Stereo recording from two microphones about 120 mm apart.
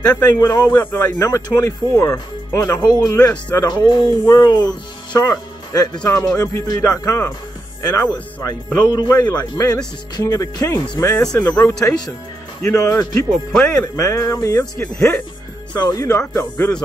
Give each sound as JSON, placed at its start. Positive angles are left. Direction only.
{"t": 0.1, "sound": "speech", "side_deg": 35}
{"t": 13.3, "sound": "speech", "side_deg": 0}
{"t": 13.9, "sound": "speech", "side_deg": 25}